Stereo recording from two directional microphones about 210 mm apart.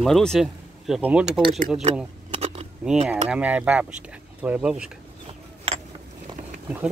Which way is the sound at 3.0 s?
5° right (ahead or behind).